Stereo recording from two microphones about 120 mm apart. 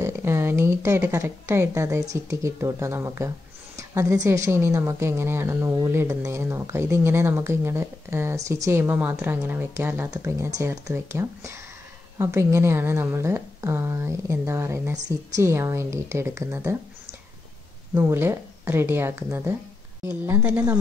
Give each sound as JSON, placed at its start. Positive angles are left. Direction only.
{"t": 0.0, "sound": "a woman's voice", "side_deg": -20}
{"t": 17.9, "sound": "a woman's voice", "side_deg": -20}